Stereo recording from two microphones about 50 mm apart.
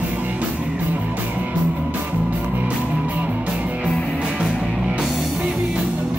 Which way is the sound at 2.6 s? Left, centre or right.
Right.